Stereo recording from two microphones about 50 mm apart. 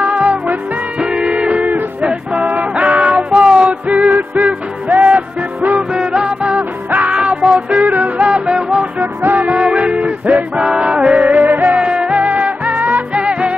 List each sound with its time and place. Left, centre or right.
0.0 s music: right
1.7 s music: right
5.6 s music: right
5.9 s music: centre
6.4 s music: right
8.2 s music: centre
9.0 s music: right
9.5 s music: right